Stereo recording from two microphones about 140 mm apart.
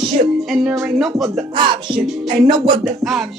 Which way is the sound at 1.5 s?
35° right (ahead or behind).